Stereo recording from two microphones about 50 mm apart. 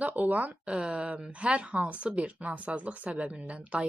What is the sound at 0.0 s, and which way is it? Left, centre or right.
A woman's voice, right.